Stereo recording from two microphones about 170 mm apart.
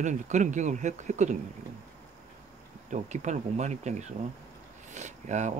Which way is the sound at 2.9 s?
45° right (ahead or behind).